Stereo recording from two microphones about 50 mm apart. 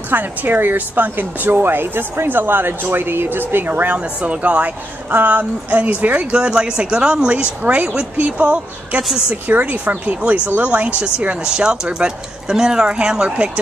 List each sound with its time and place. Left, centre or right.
0.1 s speech: right
4.0 s speech: right
6.3 s speech: right
9.3 s speech: right; by 13.5 s centre